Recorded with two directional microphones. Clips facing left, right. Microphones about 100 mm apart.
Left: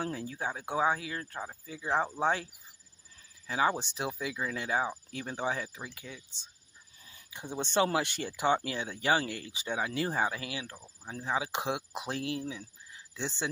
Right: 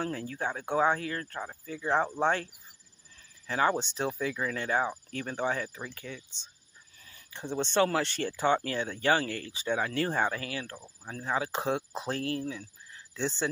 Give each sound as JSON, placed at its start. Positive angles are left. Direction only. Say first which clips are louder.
{"t": 0.0, "sound": "speech", "louder": "right 2 dB", "side_deg": 15}